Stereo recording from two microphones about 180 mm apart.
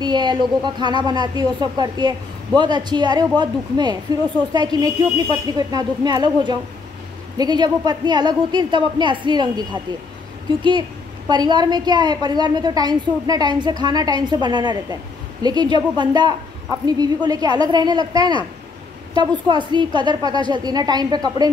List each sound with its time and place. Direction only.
0.0 s a woman's voice: 25° right (ahead or behind)